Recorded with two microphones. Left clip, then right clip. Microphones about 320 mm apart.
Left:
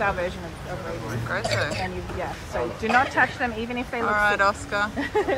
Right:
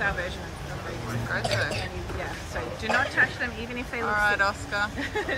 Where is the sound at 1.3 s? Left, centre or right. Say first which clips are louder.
Left 2 dB; centre.